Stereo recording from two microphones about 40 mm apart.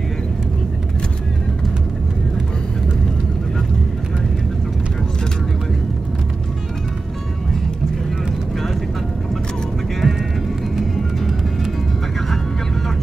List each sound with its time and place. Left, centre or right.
10.0 s music: centre